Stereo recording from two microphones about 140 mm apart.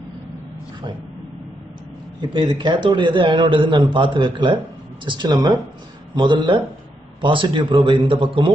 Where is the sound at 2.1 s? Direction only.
35° right (ahead or behind).